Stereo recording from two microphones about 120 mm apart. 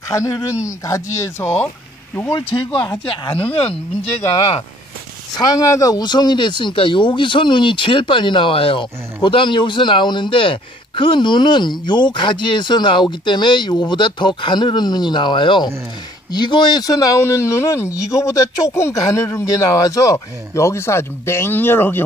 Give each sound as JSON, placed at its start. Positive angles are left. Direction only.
{"t": 0.1, "sound": "speech", "side_deg": 25}
{"t": 2.3, "sound": "speech", "side_deg": 40}
{"t": 3.3, "sound": "speech", "side_deg": 50}
{"t": 5.3, "sound": "speech", "side_deg": 35}